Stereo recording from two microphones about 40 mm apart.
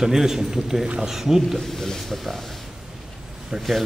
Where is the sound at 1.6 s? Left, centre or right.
Centre.